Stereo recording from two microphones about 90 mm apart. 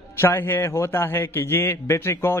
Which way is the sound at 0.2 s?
30° left (ahead or behind).